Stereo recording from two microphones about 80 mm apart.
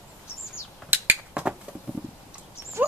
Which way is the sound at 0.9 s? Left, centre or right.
Right.